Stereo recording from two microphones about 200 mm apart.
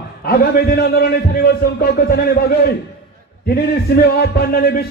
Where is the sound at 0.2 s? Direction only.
50° left (ahead or behind).